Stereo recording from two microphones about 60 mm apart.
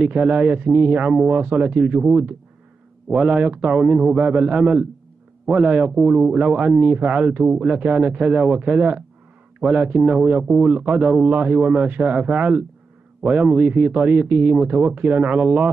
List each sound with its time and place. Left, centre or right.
0.0 s speech: right